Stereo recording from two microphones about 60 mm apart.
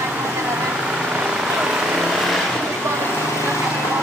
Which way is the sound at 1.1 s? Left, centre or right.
Centre.